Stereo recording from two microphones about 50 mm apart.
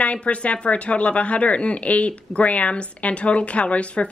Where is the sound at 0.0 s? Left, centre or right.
Left.